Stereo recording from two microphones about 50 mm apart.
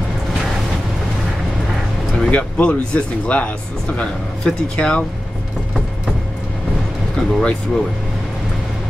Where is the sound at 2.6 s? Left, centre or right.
Left.